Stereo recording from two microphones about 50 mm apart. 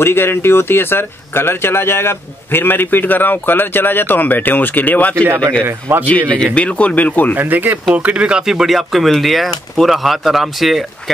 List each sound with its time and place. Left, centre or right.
0.0 s speech: left
7.3 s speech: right
8.5 s speech: centre